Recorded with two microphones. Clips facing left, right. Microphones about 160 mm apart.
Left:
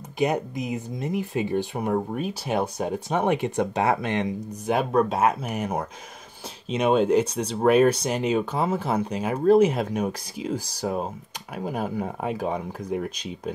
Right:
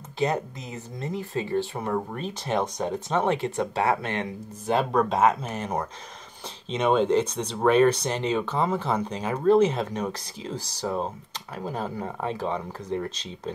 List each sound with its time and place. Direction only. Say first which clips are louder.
0.2 s speech: left 2 dB; 15° left (ahead or behind)